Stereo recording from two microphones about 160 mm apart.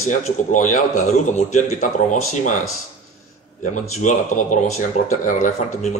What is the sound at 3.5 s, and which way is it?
A man's voice, 50° left (ahead or behind).